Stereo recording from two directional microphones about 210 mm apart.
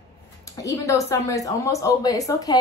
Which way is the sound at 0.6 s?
15° left (ahead or behind).